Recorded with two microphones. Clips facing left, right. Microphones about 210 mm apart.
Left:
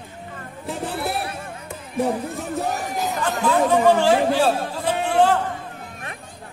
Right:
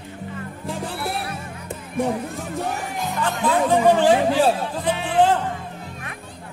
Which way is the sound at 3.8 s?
15° right (ahead or behind).